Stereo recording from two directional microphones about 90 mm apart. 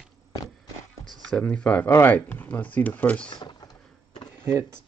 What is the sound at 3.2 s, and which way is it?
Power windows, 55° left (ahead or behind).